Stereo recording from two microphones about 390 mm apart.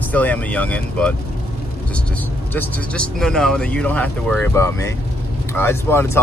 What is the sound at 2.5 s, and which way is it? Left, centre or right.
Speech, centre.